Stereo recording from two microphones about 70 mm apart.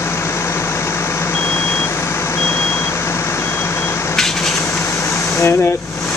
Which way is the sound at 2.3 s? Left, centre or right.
Left.